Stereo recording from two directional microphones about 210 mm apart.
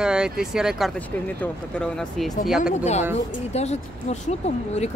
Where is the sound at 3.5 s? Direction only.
30° left (ahead or behind).